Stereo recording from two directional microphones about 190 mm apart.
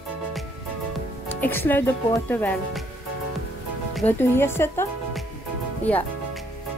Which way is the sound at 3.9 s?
5° left (ahead or behind).